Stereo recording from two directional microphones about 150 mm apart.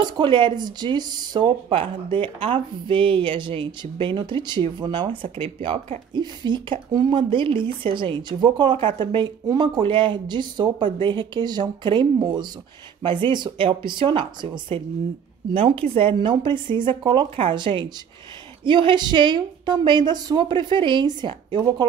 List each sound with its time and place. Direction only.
0.0 s speech: 30° right (ahead or behind)